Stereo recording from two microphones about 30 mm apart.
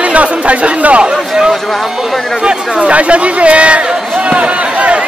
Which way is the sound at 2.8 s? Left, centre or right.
Right.